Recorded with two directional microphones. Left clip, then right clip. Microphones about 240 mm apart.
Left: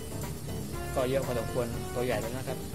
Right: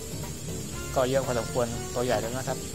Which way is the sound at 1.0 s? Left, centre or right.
Centre.